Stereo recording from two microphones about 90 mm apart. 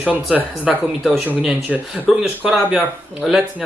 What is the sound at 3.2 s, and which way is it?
Speech, centre (ahead or behind).